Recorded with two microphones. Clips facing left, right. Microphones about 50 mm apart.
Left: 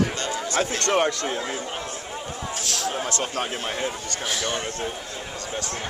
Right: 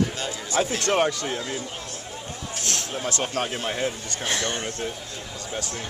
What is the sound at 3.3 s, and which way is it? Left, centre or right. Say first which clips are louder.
A man's voice: right 1 dB; centre.